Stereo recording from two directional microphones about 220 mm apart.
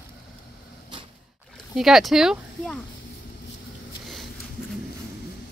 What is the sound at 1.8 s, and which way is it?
Speech, centre (ahead or behind).